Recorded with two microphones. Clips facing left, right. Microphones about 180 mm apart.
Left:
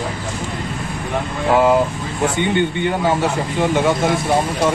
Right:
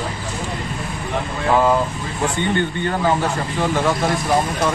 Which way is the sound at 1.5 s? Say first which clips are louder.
Left 3 dB; 10° left (ahead or behind).